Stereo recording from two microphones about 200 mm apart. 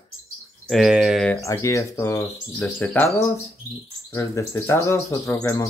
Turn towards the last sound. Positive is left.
turn(degrees=15)  # may be behind; listen again after turning